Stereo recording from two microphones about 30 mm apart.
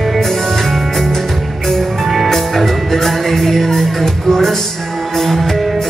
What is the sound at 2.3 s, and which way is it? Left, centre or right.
Music, centre.